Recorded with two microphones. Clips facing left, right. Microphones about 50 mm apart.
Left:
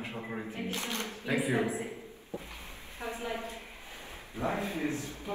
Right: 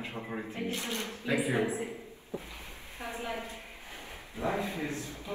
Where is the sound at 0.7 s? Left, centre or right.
Left.